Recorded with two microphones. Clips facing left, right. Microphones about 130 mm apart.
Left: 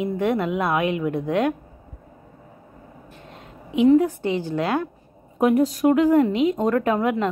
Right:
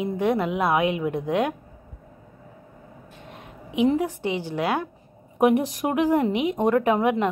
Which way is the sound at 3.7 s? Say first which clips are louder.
Left 6 dB; 20° right (ahead or behind).